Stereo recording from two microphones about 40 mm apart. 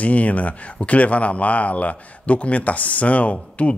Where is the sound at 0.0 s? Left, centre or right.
Left.